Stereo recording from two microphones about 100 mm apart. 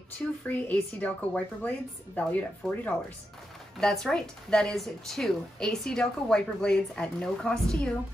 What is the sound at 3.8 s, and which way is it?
A woman's voice, 5° left (ahead or behind).